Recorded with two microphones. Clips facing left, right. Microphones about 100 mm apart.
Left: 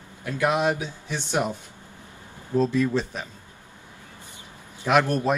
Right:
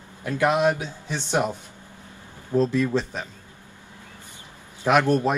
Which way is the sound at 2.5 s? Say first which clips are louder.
Right 1 dB; 50° right (ahead or behind).